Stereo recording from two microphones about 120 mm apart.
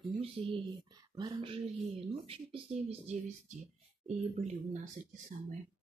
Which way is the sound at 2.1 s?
55° right (ahead or behind).